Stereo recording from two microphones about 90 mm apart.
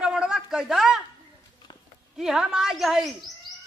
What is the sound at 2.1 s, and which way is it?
Speech, 5° right (ahead or behind).